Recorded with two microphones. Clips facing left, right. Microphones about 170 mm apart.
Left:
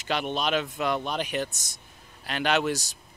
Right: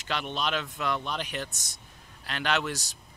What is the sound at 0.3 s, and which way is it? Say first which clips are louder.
Speech: left 4 dB; 10° left (ahead or behind).